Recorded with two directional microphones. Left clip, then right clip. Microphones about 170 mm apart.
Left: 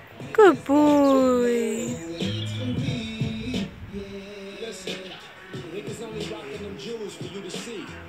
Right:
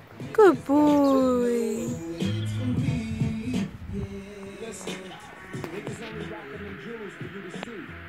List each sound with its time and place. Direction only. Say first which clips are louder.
0.3 s speech: left 2 dB; centre (ahead or behind)
1.9 s music: left 2 dB; 40° right (ahead or behind)